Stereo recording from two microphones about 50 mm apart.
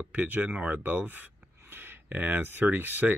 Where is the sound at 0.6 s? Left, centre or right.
Right.